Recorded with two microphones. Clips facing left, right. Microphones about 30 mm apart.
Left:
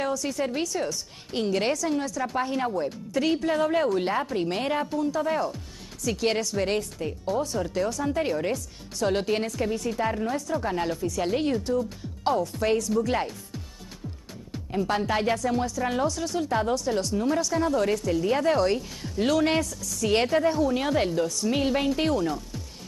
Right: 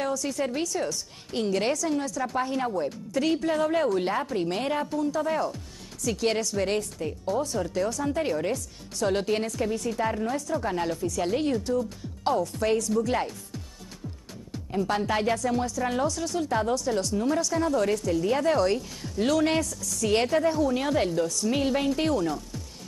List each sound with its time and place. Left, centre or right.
0.0 s speech: centre
14.5 s speech: centre